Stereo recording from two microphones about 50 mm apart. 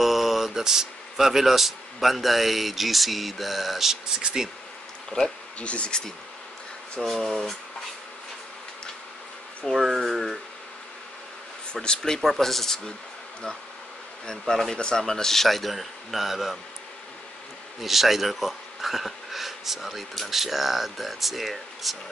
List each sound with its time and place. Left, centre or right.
0.0 s speech: centre
5.6 s speech: left
9.7 s speech: centre
11.7 s speech: centre
14.5 s speech: centre
17.7 s speech: centre